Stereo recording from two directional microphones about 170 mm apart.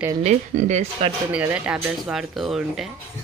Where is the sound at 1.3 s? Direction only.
10° right (ahead or behind).